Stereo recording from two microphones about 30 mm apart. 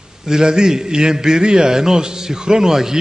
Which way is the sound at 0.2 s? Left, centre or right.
Right.